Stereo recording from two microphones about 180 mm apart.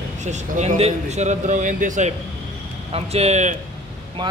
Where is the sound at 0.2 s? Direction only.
40° right (ahead or behind).